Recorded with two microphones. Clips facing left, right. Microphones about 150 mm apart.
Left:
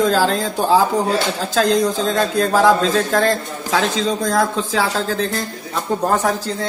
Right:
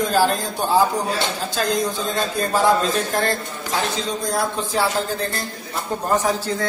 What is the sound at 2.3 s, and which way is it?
A man's voice, 90° left.